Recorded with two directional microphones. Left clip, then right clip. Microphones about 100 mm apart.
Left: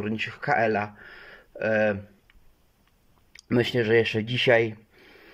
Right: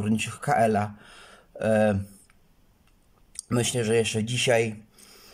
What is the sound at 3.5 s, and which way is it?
A man's voice, 25° right (ahead or behind).